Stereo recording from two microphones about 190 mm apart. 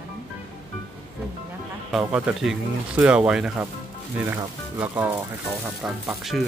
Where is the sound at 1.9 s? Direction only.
5° right (ahead or behind).